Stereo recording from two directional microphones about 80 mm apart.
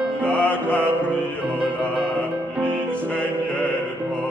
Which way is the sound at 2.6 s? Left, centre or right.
Centre.